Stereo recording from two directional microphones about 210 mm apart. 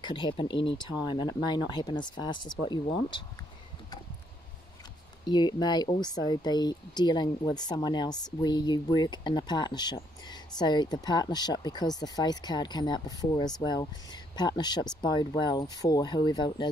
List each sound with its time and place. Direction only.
0.0 s speech: 20° left (ahead or behind)
5.2 s speech: 20° left (ahead or behind)